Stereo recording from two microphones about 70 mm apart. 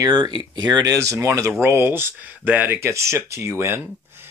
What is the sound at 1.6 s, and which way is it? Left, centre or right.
Speech, right.